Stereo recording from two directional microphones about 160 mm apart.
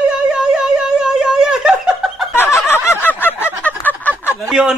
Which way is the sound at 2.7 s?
15° left (ahead or behind).